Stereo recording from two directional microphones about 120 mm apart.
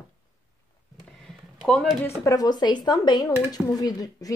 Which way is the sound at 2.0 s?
30° left (ahead or behind).